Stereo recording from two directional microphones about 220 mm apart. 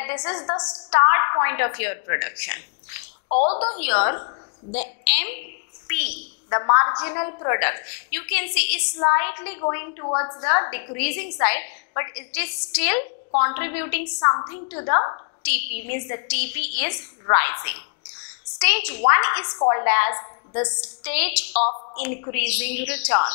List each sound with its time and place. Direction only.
0.0 s a woman's voice: 20° left (ahead or behind)
3.3 s a woman's voice: 30° left (ahead or behind)
3.7 s a woman's voice: 10° left (ahead or behind)
4.0 s a woman's voice: 25° left (ahead or behind)
4.7 s a woman's voice: 10° left (ahead or behind)
15.4 s a woman's voice: 10° left (ahead or behind)